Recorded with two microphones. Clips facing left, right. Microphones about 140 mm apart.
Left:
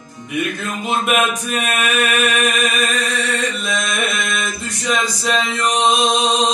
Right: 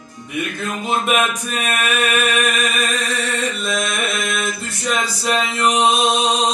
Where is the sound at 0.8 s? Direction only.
Centre (ahead or behind).